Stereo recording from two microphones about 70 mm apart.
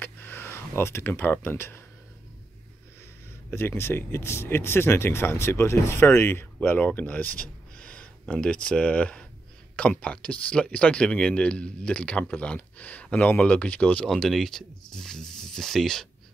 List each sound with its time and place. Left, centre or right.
0.0 s a sound: left
3.4 s speech: left
6.8 s speech: left
14.0 s speech: centre